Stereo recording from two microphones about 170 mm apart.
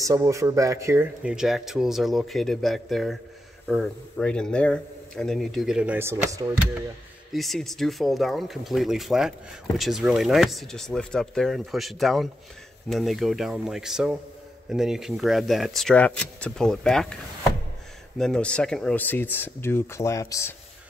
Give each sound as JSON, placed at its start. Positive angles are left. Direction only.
{"t": 0.0, "sound": "speech", "side_deg": -20}
{"t": 1.2, "sound": "speech", "side_deg": -5}
{"t": 7.3, "sound": "speech", "side_deg": 0}
{"t": 18.1, "sound": "speech", "side_deg": 5}